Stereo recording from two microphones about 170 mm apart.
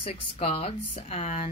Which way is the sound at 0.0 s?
35° left (ahead or behind).